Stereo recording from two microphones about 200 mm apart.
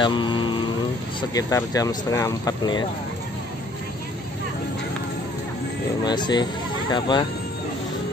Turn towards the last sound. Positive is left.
turn(degrees=20)  # may be behind; listen again after turning